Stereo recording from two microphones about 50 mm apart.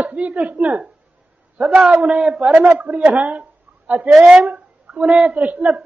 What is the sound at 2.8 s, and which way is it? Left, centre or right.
A woman's voice, right.